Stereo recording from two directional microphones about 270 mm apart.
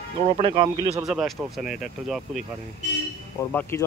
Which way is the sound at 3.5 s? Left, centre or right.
Centre.